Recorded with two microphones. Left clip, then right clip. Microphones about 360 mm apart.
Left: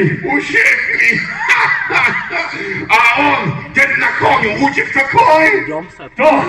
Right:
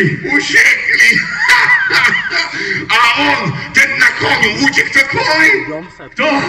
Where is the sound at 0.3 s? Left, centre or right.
Centre.